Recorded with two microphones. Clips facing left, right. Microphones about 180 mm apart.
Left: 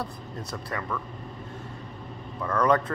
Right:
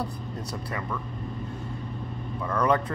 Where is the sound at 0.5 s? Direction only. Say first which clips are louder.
Left 1 dB; 30° right (ahead or behind).